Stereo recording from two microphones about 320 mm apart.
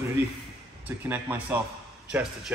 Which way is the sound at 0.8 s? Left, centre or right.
Centre.